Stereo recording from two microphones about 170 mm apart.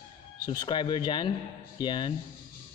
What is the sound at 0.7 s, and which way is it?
A man's voice, 25° left (ahead or behind).